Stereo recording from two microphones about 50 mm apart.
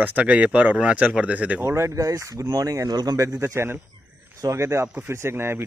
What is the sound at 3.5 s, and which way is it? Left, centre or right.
Speech, right.